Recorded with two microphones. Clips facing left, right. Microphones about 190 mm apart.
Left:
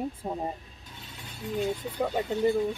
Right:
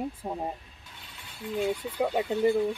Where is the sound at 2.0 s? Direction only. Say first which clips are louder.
Right 1 dB; 10° right (ahead or behind).